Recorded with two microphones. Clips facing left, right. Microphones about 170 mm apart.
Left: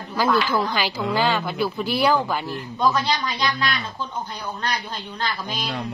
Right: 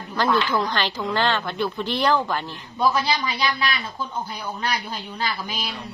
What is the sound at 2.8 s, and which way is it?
Speech, 10° right (ahead or behind).